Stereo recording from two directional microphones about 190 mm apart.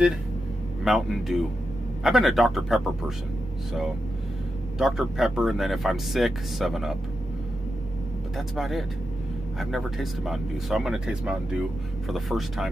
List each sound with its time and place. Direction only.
0.8 s speech: centre (ahead or behind)
4.7 s speech: centre (ahead or behind)
8.4 s speech: centre (ahead or behind)